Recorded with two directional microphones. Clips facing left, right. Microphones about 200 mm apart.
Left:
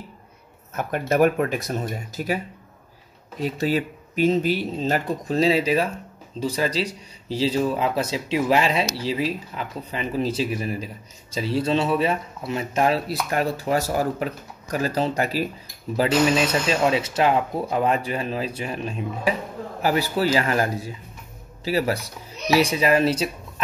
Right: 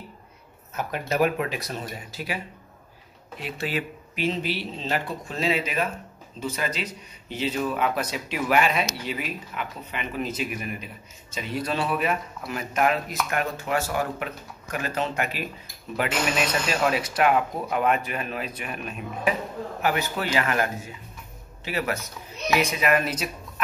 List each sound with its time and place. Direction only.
0.7 s speech: 50° left (ahead or behind); by 23.3 s 30° left (ahead or behind)